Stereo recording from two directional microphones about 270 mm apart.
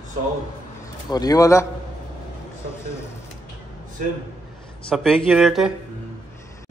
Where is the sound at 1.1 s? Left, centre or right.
Centre.